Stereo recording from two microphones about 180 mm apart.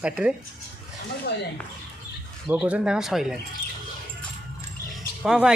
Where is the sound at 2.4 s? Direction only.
5° right (ahead or behind).